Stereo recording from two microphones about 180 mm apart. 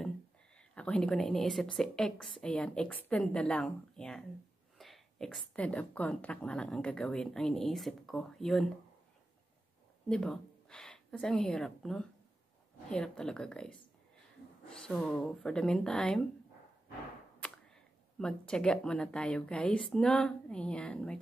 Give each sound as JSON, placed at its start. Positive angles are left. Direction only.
{"t": 0.6, "sound": "a woman's voice", "side_deg": 5}
{"t": 10.0, "sound": "a woman's voice", "side_deg": 5}
{"t": 18.2, "sound": "a woman's voice", "side_deg": 5}